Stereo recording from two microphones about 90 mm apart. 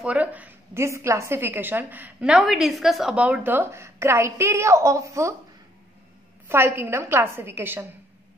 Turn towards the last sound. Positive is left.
turn(degrees=-25)  # may be behind; listen again after turning